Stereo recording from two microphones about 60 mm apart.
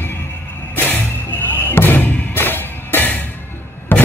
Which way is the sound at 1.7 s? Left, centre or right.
Left.